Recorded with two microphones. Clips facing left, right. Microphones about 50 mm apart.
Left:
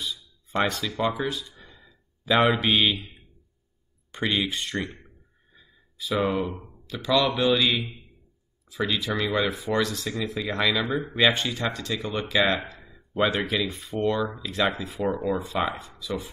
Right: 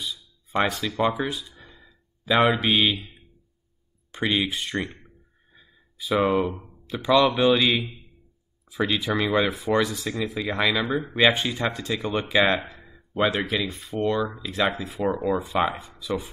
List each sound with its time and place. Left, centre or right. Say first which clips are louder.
0.0 s music: even; centre
4.1 s speech: right 2 dB; centre
5.5 s a sound: right 1 dB; centre
6.9 s speech: right 4 dB; centre
16.0 s chopping: right 5 dB; centre